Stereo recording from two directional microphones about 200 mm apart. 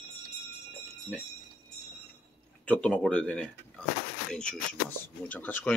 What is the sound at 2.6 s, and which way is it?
Speech, 5° left (ahead or behind).